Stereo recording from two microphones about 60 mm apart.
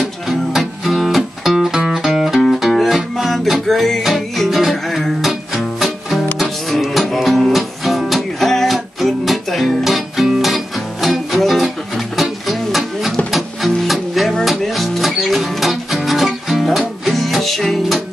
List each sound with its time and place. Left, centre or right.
0.5 s music: centre